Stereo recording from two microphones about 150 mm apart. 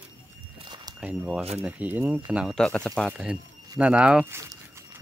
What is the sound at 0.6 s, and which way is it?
Walk, 30° right (ahead or behind).